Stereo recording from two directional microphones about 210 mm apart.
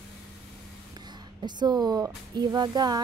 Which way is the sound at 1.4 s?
20° right (ahead or behind).